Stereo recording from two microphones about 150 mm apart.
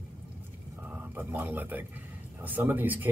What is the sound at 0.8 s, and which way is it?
Speech, 15° right (ahead or behind).